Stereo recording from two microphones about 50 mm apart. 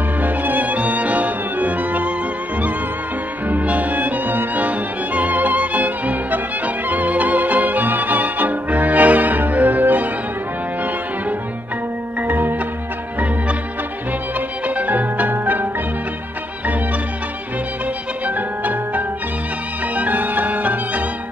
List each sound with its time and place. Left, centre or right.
0.2 s music: right
3.4 s music: right
12.2 s music: right
14.8 s music: right
18.2 s music: right